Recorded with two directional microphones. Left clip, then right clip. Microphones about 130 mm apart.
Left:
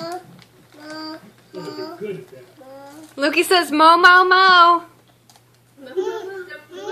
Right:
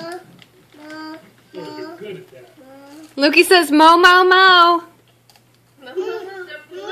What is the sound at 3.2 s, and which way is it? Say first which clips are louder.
A woman's voice: right 5 dB; 90° right.